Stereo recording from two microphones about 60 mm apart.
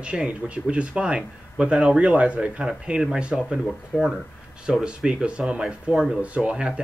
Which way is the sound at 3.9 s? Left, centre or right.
Centre.